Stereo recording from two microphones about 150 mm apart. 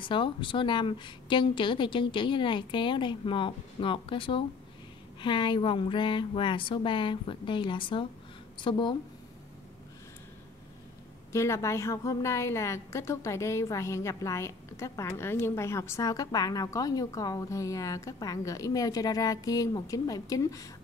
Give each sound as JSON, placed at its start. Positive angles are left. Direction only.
{"t": 0.0, "sound": "a woman's voice", "side_deg": 35}
{"t": 11.3, "sound": "a woman's voice", "side_deg": 20}